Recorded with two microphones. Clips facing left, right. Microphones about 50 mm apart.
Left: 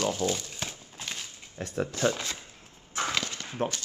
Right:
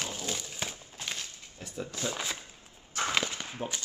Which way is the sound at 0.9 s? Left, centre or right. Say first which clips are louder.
Even; centre.